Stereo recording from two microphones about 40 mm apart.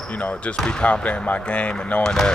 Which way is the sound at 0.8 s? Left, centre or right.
Left.